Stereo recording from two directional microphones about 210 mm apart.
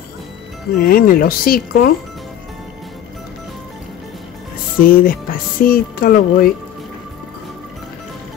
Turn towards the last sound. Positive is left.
turn(degrees=45)  # may be behind; listen again after turning